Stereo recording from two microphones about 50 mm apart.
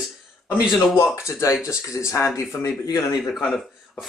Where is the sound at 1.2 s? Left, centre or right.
Left.